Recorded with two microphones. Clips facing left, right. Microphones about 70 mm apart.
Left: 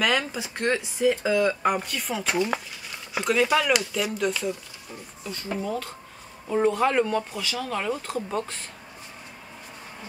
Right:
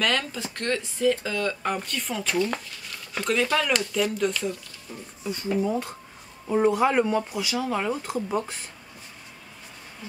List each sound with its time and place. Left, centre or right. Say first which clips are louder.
0.0 s speech: left 1 dB; centre
5.6 s speech: right 4 dB; centre